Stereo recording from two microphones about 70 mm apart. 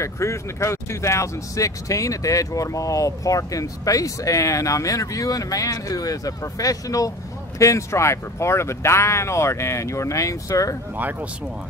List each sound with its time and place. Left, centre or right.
0.0 s speech: left
11.0 s speech: right